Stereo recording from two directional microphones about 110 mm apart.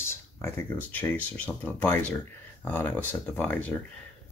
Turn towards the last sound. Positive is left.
turn(degrees=15)  # may be behind; listen again after turning